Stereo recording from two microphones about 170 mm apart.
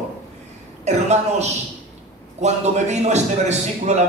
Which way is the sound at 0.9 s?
40° right (ahead or behind).